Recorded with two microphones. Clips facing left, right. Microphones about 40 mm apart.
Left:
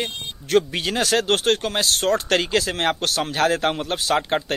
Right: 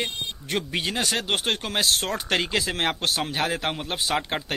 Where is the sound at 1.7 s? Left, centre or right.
Right.